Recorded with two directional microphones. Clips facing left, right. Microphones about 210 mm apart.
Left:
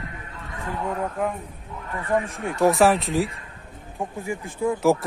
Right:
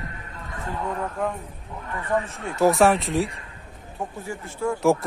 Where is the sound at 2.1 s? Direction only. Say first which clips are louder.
Left 2 dB; 15° left (ahead or behind).